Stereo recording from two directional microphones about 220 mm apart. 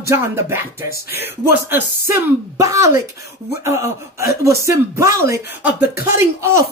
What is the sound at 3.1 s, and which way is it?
Speech, 45° left (ahead or behind).